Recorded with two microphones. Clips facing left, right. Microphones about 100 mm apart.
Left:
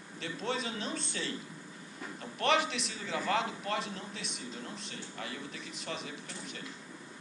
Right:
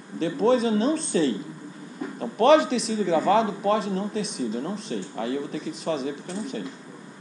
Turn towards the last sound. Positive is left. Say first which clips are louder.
# right 13 dB
turn(degrees=-35)  # may be behind; listen again after turning